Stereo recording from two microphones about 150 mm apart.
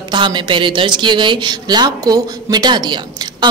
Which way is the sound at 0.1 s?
30° right (ahead or behind).